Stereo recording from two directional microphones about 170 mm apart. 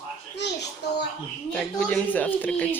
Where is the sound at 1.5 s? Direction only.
10° left (ahead or behind).